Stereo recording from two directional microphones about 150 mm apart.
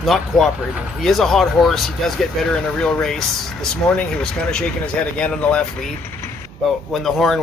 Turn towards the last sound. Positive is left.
turn(degrees=0)  # may be behind; listen again after turning